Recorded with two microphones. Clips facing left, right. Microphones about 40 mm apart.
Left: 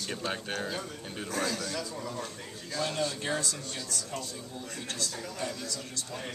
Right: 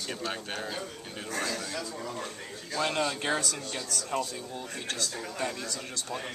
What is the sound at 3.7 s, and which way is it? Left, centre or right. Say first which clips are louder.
Speech: right 5 dB; right.